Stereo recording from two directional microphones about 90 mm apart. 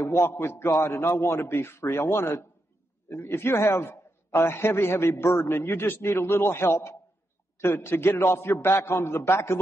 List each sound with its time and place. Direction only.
0.0 s a man's voice: 30° left (ahead or behind)